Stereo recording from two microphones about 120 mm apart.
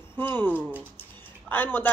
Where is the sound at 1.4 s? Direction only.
15° left (ahead or behind).